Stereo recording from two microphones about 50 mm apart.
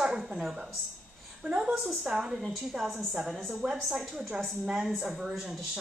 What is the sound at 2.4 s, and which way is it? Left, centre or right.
A woman's voice, centre.